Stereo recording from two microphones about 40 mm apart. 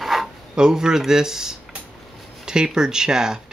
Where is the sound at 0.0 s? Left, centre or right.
Centre.